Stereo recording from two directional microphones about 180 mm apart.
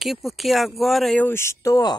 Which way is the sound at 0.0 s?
Centre (ahead or behind).